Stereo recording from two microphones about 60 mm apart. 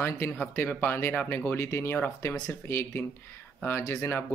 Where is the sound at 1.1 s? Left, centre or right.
Left.